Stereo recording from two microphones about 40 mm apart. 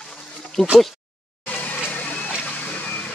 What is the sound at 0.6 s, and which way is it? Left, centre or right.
Speech, centre.